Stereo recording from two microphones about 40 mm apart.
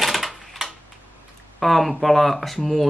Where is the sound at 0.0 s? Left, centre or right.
Centre.